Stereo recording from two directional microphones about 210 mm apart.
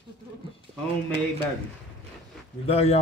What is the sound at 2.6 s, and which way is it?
Speech, 30° left (ahead or behind).